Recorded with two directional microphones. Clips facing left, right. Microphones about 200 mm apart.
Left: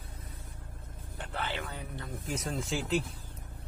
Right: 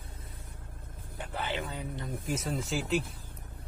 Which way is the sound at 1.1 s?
10° right (ahead or behind).